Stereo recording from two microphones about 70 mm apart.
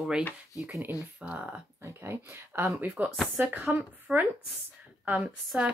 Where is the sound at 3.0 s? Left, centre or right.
Right.